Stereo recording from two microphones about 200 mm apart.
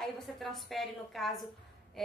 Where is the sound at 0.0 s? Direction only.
Centre (ahead or behind).